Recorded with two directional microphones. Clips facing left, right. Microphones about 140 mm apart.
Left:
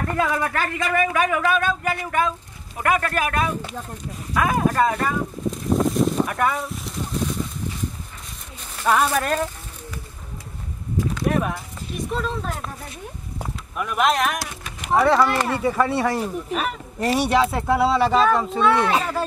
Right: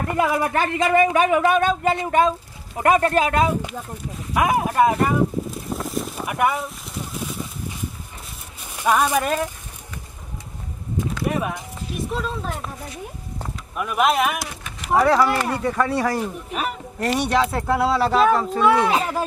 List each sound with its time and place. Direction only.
0.1 s speech: 15° right (ahead or behind)
5.9 s a sound: 5° right (ahead or behind)
8.7 s speech: 15° right (ahead or behind)
11.2 s clip-clop: 5° right (ahead or behind)
11.9 s speech: centre (ahead or behind)
13.7 s speech: 5° right (ahead or behind)